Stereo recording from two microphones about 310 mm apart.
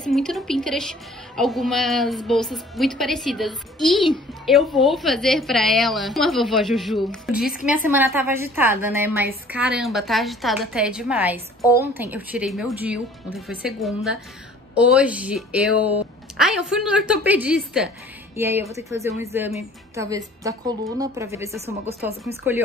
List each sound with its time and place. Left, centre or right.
0.0 s a woman's voice: centre
15.7 s speech: left
16.3 s a woman's voice: centre